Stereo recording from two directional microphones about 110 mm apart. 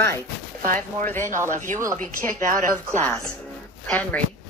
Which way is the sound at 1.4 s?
30° right (ahead or behind).